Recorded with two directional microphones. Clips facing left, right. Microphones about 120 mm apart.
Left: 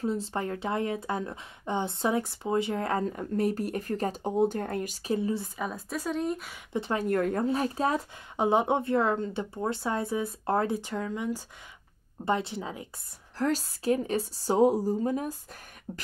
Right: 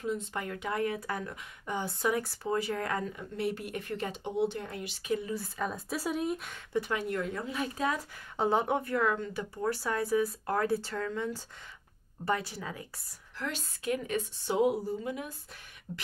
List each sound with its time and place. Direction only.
0.0 s speech: 35° left (ahead or behind)
3.2 s speech: 40° left (ahead or behind)
5.6 s a woman's voice: centre (ahead or behind)
6.7 s speech: 25° left (ahead or behind)
7.0 s speech: 50° left (ahead or behind)
8.4 s speech: 20° left (ahead or behind)
13.4 s speech: 40° left (ahead or behind)
15.9 s a sound: 50° left (ahead or behind)